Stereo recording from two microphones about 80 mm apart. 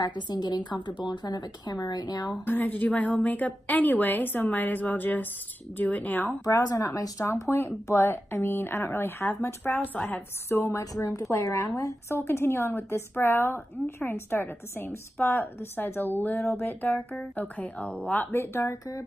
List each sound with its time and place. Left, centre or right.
0.0 s speech: left
0.7 s speech: left
2.4 s a woman's voice: left
6.4 s speech: left
9.9 s a woman's voice: left
10.5 s speech: left
12.1 s a woman's voice: left
18.3 s speech: left
18.7 s speech: left